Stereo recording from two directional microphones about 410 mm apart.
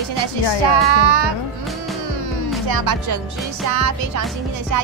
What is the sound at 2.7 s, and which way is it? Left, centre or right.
Speech, right.